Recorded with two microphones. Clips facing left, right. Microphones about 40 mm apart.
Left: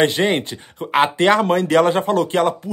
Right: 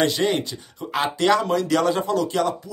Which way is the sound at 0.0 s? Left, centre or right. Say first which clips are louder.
Left 4 dB; left.